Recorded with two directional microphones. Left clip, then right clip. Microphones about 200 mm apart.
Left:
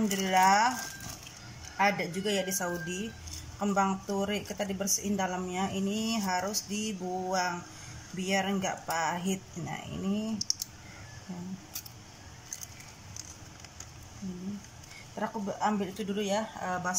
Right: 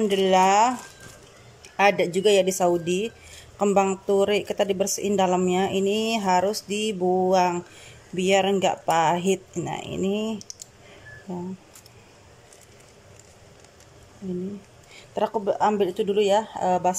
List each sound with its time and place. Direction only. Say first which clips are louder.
0.1 s speech: right 5 dB; 55° right (ahead or behind)
1.8 s speech: right 9 dB; 50° right (ahead or behind)
15.1 s speech: right 11 dB; 50° right (ahead or behind)